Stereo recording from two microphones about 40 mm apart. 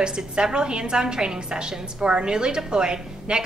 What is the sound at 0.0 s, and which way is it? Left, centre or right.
A woman's voice, right.